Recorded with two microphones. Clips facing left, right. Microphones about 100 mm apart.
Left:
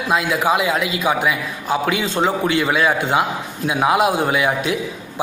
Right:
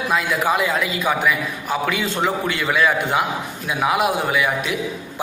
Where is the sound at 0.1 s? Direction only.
20° left (ahead or behind).